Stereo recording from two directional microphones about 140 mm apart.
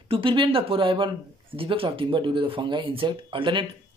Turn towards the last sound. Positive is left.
turn(degrees=-35)  # may be behind; listen again after turning